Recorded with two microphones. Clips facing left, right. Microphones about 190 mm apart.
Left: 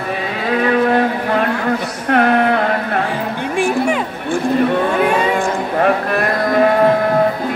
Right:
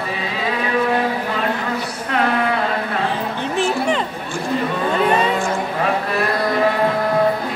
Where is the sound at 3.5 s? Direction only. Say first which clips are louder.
Left 3 dB; 10° left (ahead or behind).